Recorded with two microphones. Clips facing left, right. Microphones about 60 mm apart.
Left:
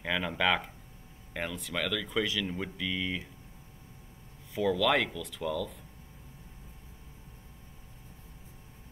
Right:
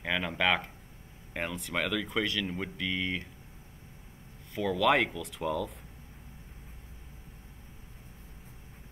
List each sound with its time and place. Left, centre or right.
0.0 s speech: centre
1.3 s speech: centre
4.7 s speech: centre